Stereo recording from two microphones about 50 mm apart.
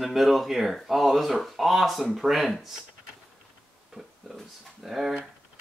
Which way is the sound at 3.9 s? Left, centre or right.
Centre.